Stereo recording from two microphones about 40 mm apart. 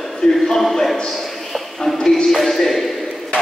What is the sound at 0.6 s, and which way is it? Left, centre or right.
Speech, centre.